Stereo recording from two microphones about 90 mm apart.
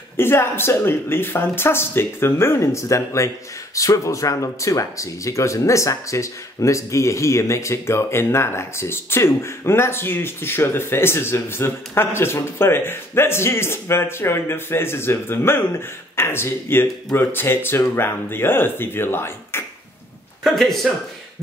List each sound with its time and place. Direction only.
0.2 s speech: 25° left (ahead or behind)
20.4 s speech: 5° left (ahead or behind)